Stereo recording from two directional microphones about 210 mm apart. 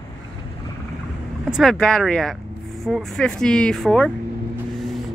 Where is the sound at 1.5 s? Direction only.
Centre (ahead or behind).